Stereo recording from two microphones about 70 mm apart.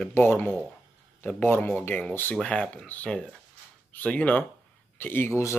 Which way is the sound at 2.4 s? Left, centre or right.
Centre.